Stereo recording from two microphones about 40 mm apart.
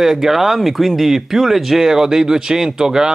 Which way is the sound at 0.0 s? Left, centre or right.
Centre.